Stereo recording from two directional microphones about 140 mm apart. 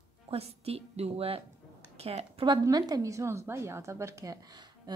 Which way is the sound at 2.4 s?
30° right (ahead or behind).